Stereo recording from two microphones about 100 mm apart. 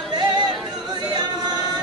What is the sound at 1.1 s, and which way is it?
Singing, 45° right (ahead or behind).